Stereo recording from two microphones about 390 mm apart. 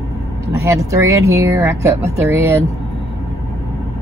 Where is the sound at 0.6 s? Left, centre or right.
Centre.